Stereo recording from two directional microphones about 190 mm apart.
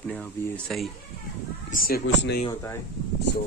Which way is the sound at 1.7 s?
50° left (ahead or behind).